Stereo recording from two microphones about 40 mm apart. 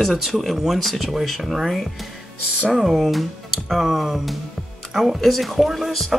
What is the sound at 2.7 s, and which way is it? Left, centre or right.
Speech, centre.